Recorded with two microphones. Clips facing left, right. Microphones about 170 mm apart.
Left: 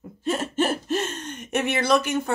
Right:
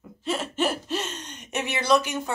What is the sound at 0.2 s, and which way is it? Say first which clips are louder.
Speech: left 2 dB; 45° left (ahead or behind).